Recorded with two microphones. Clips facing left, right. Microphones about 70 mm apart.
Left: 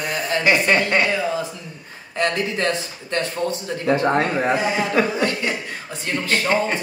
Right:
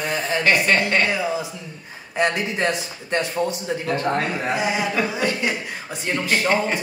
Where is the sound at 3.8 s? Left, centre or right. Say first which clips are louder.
Left 5 dB; left.